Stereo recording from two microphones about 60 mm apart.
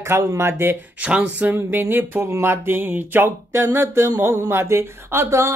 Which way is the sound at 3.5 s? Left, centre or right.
Right.